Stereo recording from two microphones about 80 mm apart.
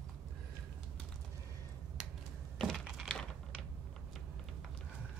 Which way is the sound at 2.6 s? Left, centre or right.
Centre.